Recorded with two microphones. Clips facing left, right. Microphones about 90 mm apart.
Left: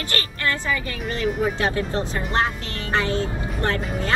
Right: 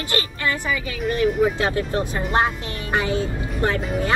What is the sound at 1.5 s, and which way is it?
Speech, 20° right (ahead or behind).